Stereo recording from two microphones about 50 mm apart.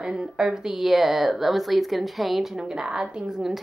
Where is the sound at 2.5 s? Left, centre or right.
Centre.